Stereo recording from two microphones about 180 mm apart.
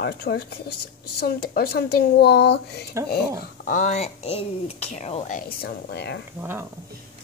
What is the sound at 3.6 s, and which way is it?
Speech, 45° left (ahead or behind).